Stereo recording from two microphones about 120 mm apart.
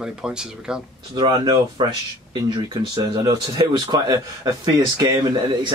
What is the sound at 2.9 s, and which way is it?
Speech, 35° right (ahead or behind).